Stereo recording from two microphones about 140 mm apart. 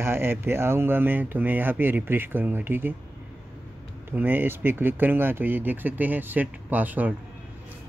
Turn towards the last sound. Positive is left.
turn(degrees=-10)  # may be behind; listen again after turning